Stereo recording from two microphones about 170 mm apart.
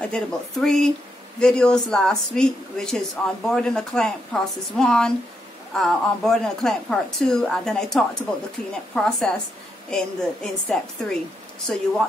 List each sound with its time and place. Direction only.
0.0 s speech: 5° left (ahead or behind)